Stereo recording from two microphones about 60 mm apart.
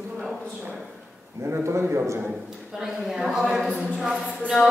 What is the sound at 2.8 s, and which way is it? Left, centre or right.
A woman's voice, centre.